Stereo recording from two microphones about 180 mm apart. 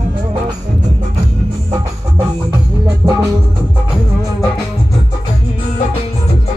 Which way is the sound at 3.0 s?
5° right (ahead or behind).